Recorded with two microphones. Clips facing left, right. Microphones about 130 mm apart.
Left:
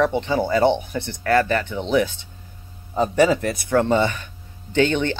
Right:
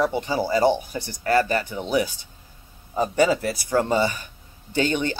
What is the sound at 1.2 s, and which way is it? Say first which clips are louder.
Speech: left 2 dB; 35° right (ahead or behind).